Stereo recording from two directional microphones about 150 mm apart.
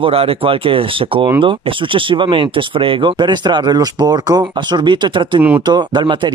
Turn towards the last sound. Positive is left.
turn(degrees=-30)  # may be behind; listen again after turning